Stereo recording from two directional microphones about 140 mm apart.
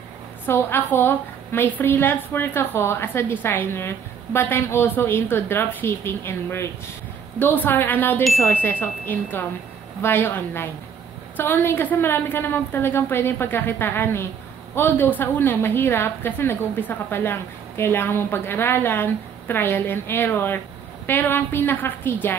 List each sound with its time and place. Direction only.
0.5 s a woman's voice: 15° left (ahead or behind)